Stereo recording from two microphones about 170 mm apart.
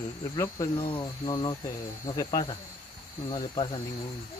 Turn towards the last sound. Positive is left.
turn(degrees=30)  # may be behind; listen again after turning